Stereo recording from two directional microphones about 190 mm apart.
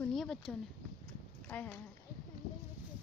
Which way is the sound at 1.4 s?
5° left (ahead or behind).